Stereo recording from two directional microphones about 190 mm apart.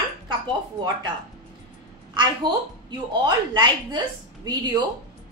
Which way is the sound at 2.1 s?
25° right (ahead or behind).